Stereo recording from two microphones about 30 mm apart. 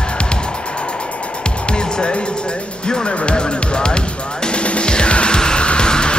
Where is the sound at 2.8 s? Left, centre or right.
Left.